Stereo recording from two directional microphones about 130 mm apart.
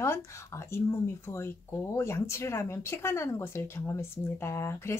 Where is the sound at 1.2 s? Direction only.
20° left (ahead or behind).